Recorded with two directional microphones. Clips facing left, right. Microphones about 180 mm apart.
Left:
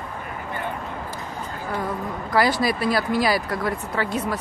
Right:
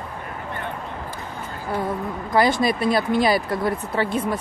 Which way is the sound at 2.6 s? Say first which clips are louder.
Right 2 dB; 25° right (ahead or behind).